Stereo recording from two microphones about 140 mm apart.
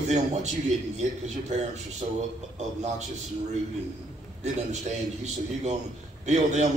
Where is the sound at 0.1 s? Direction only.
50° right (ahead or behind).